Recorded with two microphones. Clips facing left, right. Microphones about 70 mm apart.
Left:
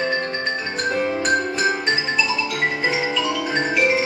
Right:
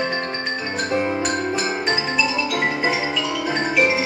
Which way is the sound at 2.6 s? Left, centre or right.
Right.